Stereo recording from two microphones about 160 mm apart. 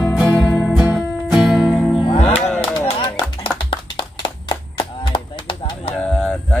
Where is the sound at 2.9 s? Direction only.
35° left (ahead or behind).